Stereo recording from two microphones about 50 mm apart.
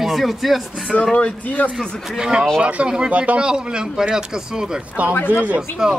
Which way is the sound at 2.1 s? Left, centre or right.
Centre.